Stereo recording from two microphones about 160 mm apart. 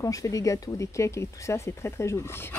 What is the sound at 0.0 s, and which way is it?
Speech, 20° left (ahead or behind).